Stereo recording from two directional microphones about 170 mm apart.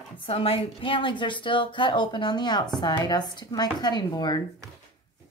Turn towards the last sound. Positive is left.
turn(degrees=25)  # may be behind; listen again after turning